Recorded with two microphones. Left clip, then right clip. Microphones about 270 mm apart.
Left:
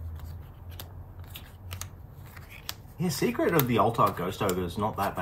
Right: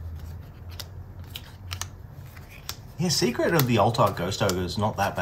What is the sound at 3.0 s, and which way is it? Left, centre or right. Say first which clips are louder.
Speech: right 3 dB; right.